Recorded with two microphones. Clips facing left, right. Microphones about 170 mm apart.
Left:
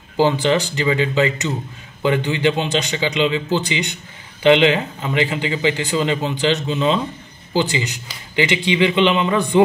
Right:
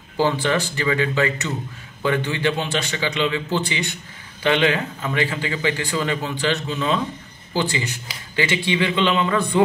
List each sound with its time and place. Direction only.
0.2 s a man's voice: 20° left (ahead or behind)